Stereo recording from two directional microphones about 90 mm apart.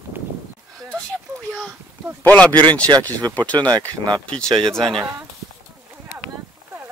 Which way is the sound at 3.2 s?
55° right (ahead or behind).